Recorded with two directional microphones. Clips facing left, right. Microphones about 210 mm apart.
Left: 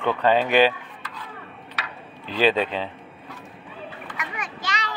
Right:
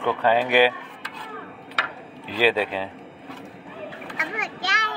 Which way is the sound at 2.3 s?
10° right (ahead or behind).